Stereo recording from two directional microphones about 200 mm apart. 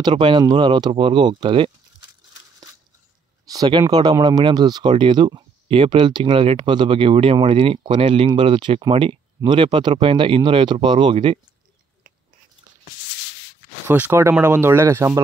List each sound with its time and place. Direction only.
0.1 s speech: 25° right (ahead or behind)
3.4 s speech: 20° right (ahead or behind)
13.8 s speech: 10° right (ahead or behind)